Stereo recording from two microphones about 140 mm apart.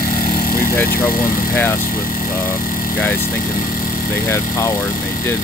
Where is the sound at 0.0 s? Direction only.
90° left.